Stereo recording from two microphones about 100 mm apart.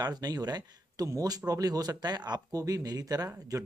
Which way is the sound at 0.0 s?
45° right (ahead or behind).